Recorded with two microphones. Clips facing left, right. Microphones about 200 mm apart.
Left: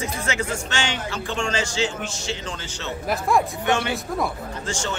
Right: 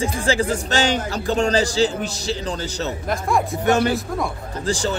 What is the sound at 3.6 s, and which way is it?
Speech, 40° right (ahead or behind).